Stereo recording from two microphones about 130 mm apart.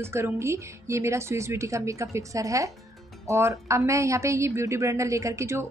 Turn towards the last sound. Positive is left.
turn(degrees=-20)  # may be behind; listen again after turning